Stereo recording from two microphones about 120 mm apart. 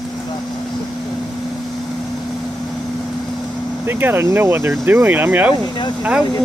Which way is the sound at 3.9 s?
20° right (ahead or behind).